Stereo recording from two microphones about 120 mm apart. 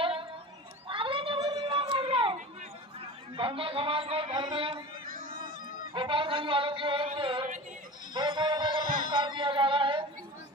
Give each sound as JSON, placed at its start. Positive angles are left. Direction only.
{"t": 0.0, "sound": "a sound", "side_deg": -45}
{"t": 3.3, "sound": "a man's voice", "side_deg": -45}
{"t": 5.9, "sound": "a man's voice", "side_deg": -45}
{"t": 8.1, "sound": "music", "side_deg": -40}